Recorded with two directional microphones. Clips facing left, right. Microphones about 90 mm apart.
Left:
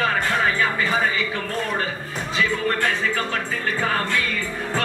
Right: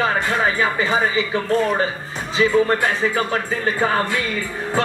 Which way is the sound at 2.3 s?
20° right (ahead or behind).